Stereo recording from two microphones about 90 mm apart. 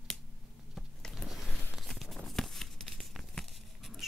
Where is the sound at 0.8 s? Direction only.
5° left (ahead or behind).